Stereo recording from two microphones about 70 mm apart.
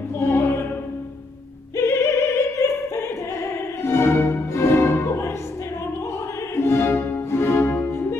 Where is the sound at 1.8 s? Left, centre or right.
Left.